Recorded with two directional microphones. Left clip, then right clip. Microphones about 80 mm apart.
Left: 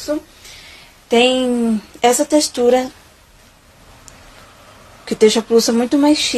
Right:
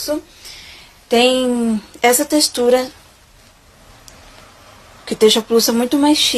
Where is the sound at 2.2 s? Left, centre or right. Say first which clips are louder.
Left 1 dB; left.